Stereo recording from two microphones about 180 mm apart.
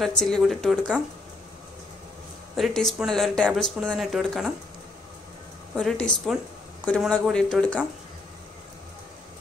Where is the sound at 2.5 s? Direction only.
Centre (ahead or behind).